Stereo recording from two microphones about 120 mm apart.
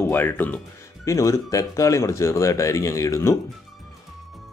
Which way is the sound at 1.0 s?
25° left (ahead or behind).